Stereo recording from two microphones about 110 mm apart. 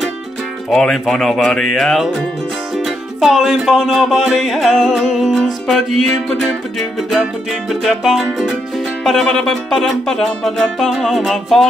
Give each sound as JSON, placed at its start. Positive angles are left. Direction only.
{"t": 0.7, "sound": "music", "side_deg": 0}